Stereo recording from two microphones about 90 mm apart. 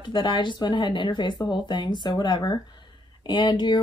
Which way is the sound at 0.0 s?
60° left (ahead or behind).